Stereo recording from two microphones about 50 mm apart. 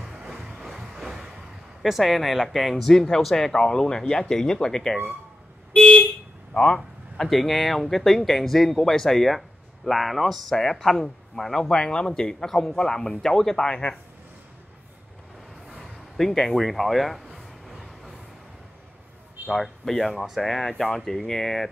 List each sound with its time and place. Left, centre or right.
0.0 s a sound: centre
1.8 s speech: centre
5.8 s vehicle: left
6.5 s speech: centre
7.2 s speech: centre
11.7 s speech: centre
15.8 s a sound: centre
19.4 s speech: centre